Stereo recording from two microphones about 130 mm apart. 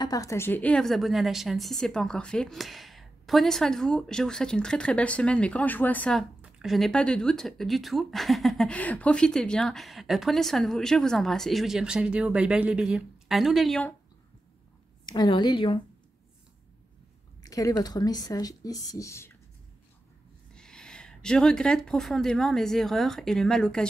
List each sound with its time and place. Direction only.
0.0 s speech: 25° left (ahead or behind); by 6.2 s 10° left (ahead or behind)
6.4 s speech: centre (ahead or behind)
15.0 s a woman's voice: 35° left (ahead or behind)
17.4 s speech: 25° left (ahead or behind)
20.5 s speech: 5° left (ahead or behind)